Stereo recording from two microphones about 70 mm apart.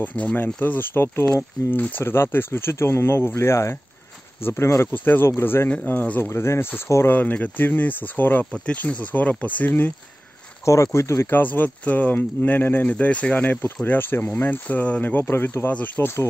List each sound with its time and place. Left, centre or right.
0.0 s speech: left
1.2 s speech: left
4.9 s speech: left
5.7 s speech: left
6.3 s speech: left
7.1 s speech: left
10.6 s speech: left
11.2 s speech: left
16.0 s speech: left